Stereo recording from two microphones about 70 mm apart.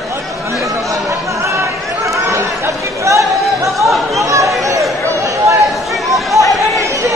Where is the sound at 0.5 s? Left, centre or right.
Right.